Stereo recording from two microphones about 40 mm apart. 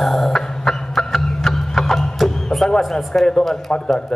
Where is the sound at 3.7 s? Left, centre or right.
Centre.